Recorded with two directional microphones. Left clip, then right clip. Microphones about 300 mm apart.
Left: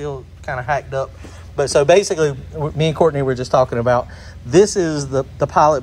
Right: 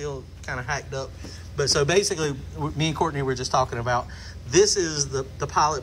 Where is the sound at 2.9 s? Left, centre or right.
Left.